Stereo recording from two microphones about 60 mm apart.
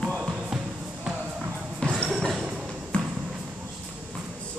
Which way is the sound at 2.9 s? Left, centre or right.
Centre.